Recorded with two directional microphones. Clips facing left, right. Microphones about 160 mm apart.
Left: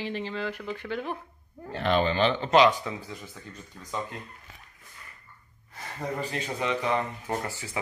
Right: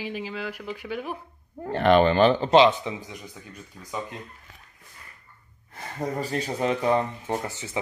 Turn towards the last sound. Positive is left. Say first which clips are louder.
# right 2 dB
turn(degrees=-20)  # may be behind; listen again after turning